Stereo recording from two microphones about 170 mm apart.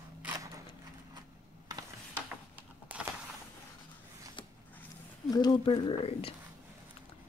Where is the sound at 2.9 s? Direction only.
10° right (ahead or behind).